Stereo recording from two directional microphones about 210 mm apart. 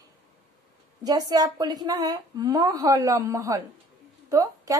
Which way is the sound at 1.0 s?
20° right (ahead or behind).